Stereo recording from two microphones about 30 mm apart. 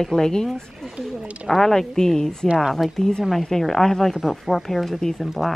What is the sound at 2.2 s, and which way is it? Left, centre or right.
A woman's voice, left.